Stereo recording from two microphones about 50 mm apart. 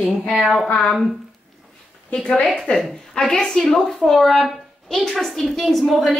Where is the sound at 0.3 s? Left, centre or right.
Centre.